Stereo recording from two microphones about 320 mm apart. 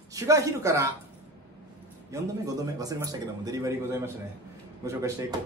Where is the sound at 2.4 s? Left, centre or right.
Centre.